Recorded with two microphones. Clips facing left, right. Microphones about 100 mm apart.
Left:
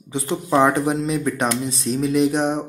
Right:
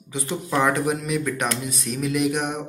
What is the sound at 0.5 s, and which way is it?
Speech, 30° left (ahead or behind).